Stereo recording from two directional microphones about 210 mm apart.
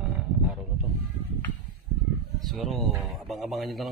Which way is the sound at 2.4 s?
Centre (ahead or behind).